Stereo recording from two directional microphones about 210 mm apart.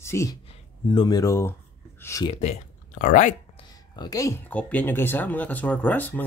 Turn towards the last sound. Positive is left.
turn(degrees=10)  # may be behind; listen again after turning